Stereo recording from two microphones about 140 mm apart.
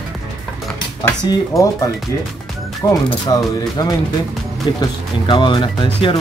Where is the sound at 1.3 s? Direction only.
25° left (ahead or behind).